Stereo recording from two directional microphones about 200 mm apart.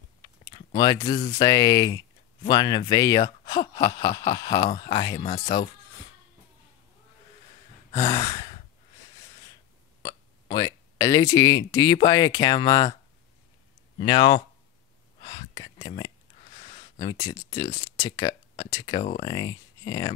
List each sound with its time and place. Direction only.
0.7 s speech: 20° left (ahead or behind)
5.2 s speech: 40° left (ahead or behind)
8.0 s sigh: 25° left (ahead or behind)
10.0 s speech: 20° left (ahead or behind)
13.9 s speech: 20° left (ahead or behind)
15.2 s a sound: 20° left (ahead or behind)
16.5 s a sound: 35° left (ahead or behind)
17.0 s speech: 20° left (ahead or behind)